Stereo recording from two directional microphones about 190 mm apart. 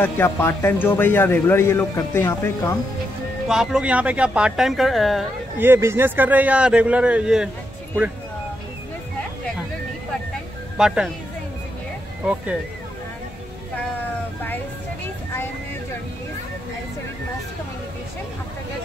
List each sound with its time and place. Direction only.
0.0 s a man's voice: 10° left (ahead or behind)
3.4 s speech: 5° right (ahead or behind)
5.6 s a man's voice: 10° right (ahead or behind)
10.8 s speech: centre (ahead or behind)